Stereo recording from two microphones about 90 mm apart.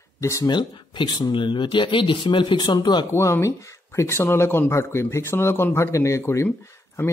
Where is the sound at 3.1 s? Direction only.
30° left (ahead or behind).